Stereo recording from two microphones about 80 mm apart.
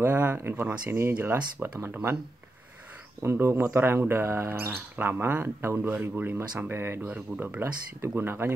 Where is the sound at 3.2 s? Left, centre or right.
Right.